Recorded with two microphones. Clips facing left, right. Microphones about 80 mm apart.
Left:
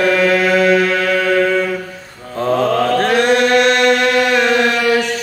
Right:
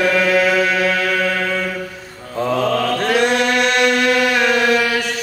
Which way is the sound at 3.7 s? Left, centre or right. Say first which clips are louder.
Left 4 dB; left.